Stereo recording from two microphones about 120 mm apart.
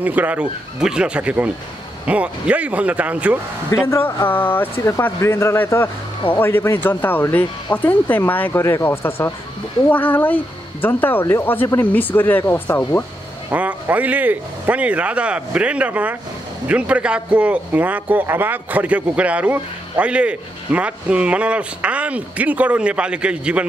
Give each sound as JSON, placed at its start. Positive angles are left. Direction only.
{"t": 0.0, "sound": "a man's voice", "side_deg": -15}
{"t": 3.7, "sound": "speech", "side_deg": 20}
{"t": 13.5, "sound": "a man's voice", "side_deg": -15}